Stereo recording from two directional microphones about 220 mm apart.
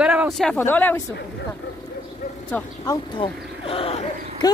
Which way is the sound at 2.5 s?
15° left (ahead or behind).